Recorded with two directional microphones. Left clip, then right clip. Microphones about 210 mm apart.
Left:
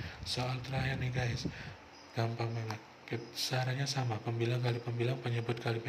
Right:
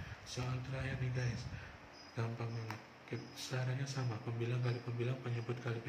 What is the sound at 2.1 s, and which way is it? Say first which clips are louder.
Music: left 8 dB; 45° left (ahead or behind).